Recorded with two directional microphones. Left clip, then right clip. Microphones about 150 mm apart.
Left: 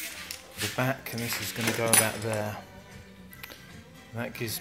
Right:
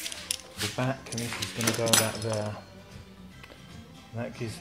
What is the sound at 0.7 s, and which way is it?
Speech, 10° left (ahead or behind).